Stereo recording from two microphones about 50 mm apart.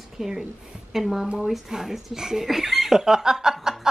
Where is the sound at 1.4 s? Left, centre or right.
Centre.